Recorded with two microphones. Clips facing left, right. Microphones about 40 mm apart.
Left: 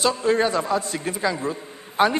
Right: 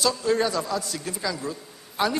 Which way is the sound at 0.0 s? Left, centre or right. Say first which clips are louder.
Left 3 dB; left.